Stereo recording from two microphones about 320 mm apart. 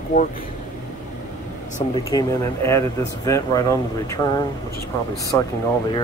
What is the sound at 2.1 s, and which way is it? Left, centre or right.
Speech, centre.